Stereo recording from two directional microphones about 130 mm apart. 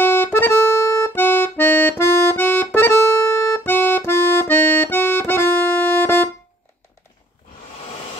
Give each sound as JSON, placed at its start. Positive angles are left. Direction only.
{"t": 0.0, "sound": "accordion", "side_deg": 15}